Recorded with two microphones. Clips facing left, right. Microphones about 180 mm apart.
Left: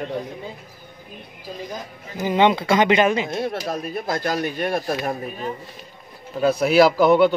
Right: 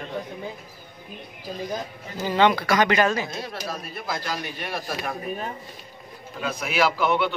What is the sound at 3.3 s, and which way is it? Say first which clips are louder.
Speech: left 7 dB; 55° left (ahead or behind).